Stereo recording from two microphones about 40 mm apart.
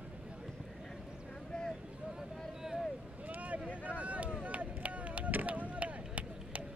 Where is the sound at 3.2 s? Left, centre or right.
Right.